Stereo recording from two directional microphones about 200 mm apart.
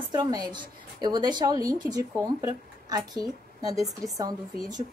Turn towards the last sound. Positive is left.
turn(degrees=-20)  # may be behind; listen again after turning